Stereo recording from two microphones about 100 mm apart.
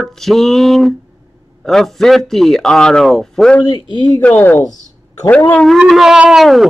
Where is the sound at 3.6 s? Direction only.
50° left (ahead or behind).